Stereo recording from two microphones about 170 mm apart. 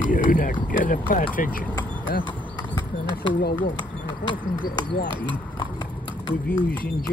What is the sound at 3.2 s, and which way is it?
Speech, 70° left (ahead or behind).